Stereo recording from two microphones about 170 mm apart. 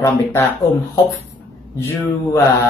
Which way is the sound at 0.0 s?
15° left (ahead or behind).